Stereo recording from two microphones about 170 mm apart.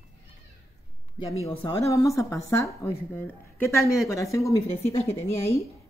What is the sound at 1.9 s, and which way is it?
A woman's voice, 20° left (ahead or behind).